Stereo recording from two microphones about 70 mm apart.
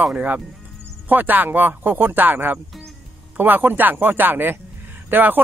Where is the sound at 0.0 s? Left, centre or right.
Right.